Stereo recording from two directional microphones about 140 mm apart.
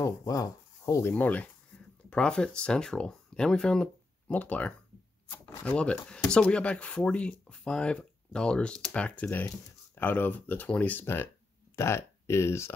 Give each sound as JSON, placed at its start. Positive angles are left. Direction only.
{"t": 0.0, "sound": "speech", "side_deg": 25}
{"t": 1.1, "sound": "speech", "side_deg": 10}